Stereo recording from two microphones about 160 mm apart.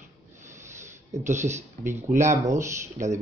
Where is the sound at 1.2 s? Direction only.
50° right (ahead or behind).